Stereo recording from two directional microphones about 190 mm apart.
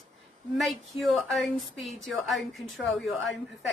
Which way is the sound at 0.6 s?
Centre (ahead or behind).